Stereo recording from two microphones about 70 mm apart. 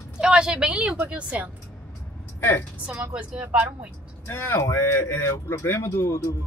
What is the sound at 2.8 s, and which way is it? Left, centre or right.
Speech, right.